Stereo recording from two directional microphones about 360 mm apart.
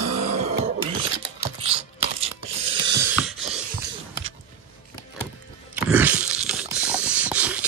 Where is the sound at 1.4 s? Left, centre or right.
Centre.